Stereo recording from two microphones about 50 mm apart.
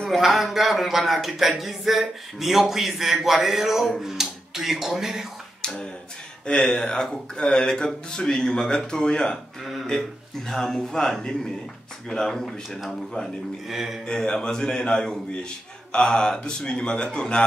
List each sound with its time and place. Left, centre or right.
0.2 s speech: centre
5.6 s a sound: centre
6.4 s speech: centre
10.5 s speech: centre
13.7 s speech: centre
14.0 s speech: centre